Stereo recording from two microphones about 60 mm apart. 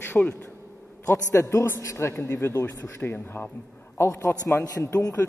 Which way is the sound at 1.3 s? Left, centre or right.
Left.